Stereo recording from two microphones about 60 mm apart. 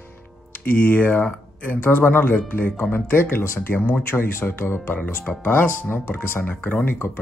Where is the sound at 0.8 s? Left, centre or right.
Left.